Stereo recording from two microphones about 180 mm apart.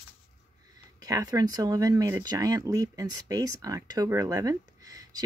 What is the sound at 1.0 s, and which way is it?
Speech, 20° right (ahead or behind).